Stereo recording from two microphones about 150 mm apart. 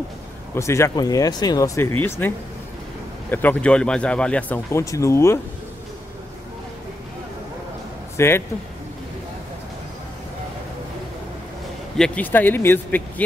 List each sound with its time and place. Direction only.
0.6 s speech: 20° left (ahead or behind)
8.2 s speech: 15° left (ahead or behind)
12.0 s speech: 10° left (ahead or behind)